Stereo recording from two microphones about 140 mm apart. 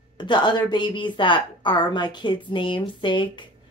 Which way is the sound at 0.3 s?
30° left (ahead or behind).